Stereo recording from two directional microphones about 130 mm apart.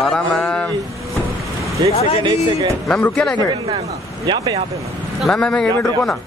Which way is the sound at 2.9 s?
5° left (ahead or behind).